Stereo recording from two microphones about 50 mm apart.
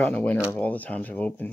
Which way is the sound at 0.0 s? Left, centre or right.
Left.